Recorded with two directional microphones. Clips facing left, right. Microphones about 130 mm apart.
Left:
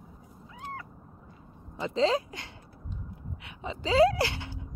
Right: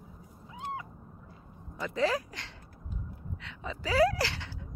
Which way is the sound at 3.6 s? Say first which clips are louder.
Left 4 dB; 25° left (ahead or behind).